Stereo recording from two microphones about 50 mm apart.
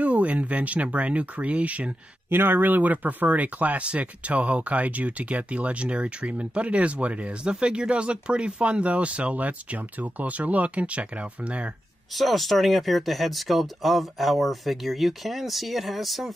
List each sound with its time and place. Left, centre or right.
0.0 s speech: right
2.2 s speech: right
12.2 s speech: centre